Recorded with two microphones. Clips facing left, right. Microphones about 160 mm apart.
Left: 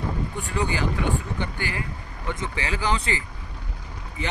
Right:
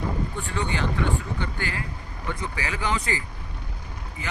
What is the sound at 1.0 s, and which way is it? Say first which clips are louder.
Speech: left 1 dB; 15° left (ahead or behind).